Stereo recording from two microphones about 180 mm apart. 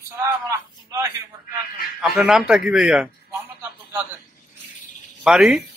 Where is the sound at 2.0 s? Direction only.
Centre (ahead or behind).